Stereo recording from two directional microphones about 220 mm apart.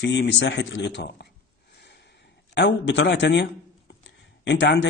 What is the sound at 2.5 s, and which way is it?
Speech, 55° left (ahead or behind).